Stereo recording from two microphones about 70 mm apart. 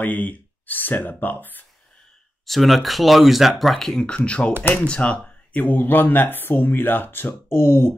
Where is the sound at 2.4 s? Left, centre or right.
Centre.